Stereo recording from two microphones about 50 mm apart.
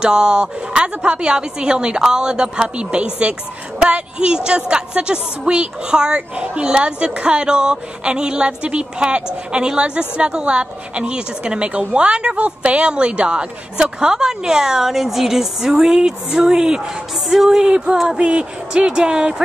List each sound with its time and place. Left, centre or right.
0.0 s a woman's voice: centre
17.6 s a woman's voice: centre